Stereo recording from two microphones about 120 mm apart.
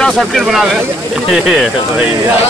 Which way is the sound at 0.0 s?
Centre (ahead or behind).